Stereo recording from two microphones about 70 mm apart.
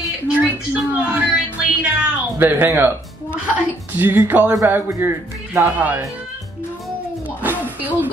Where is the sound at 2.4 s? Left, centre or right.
Right.